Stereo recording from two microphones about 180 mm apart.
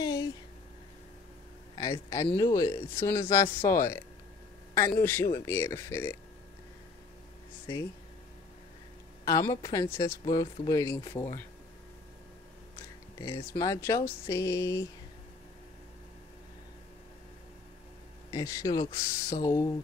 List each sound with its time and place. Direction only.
0.0 s a sound: 20° left (ahead or behind)
1.8 s speech: 20° left (ahead or behind)
5.0 s speech: 15° left (ahead or behind)
9.2 s speech: 20° left (ahead or behind)
13.2 s speech: 15° left (ahead or behind)
18.3 s speech: 20° left (ahead or behind)